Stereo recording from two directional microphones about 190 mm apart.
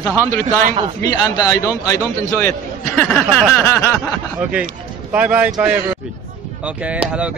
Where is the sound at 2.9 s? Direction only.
5° left (ahead or behind).